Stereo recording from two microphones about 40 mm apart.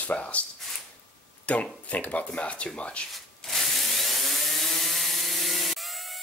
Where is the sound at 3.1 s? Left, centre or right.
Centre.